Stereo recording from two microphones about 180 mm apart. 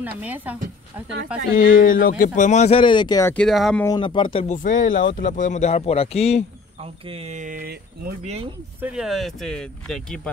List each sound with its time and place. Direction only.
0.2 s speech: 10° right (ahead or behind)
1.5 s speech: 50° left (ahead or behind); by 3.3 s 20° left (ahead or behind)
3.3 s speech: centre (ahead or behind)
3.8 s speech: 25° left (ahead or behind)
4.5 s speech: 45° left (ahead or behind)
6.8 s speech: 35° right (ahead or behind); by 8.2 s 55° right (ahead or behind)
8.2 s speech: 35° right (ahead or behind)
8.8 s speech: 5° right (ahead or behind)